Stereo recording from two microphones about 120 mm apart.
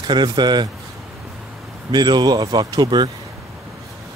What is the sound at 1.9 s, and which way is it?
Speech, 35° right (ahead or behind).